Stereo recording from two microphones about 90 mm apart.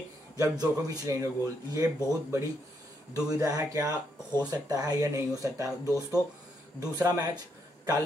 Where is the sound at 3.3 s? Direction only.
40° right (ahead or behind).